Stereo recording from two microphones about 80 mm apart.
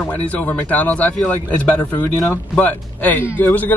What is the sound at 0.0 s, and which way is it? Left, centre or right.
A man's voice, centre.